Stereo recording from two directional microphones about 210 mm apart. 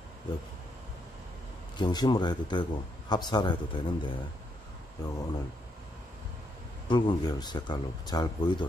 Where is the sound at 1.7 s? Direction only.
20° left (ahead or behind).